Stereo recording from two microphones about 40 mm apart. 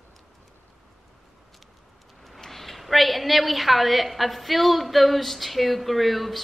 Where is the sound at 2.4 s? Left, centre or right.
Centre.